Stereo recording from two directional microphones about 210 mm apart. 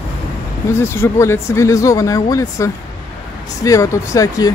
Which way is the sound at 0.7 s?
10° left (ahead or behind).